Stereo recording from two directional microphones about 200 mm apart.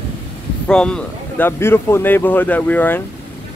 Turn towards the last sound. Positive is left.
turn(degrees=10)  # may be behind; listen again after turning